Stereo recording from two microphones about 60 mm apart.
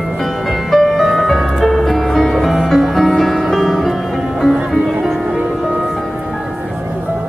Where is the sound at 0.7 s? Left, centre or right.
Centre.